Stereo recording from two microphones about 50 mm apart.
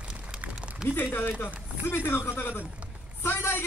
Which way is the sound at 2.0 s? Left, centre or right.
Left.